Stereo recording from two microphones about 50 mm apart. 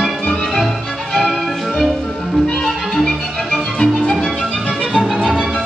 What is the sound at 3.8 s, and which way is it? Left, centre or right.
Music, centre.